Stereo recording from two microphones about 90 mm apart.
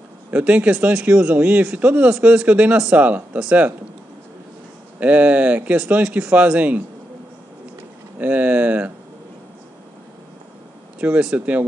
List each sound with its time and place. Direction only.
0.3 s speech: 15° right (ahead or behind)
5.0 s speech: 15° right (ahead or behind)
8.2 s speech: 20° right (ahead or behind)
11.0 s speech: 15° right (ahead or behind)